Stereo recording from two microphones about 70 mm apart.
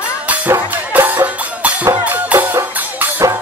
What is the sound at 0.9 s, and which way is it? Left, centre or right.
Music, right.